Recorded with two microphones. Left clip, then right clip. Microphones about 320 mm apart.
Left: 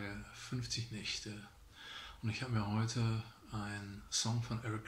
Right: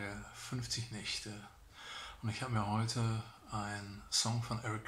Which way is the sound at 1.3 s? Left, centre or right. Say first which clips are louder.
Right 1 dB; centre.